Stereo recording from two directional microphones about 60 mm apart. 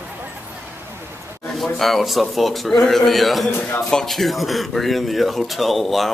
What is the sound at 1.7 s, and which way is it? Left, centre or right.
Speech, centre.